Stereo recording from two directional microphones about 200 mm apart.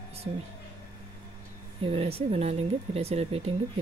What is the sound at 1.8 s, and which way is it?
Speech, 30° right (ahead or behind).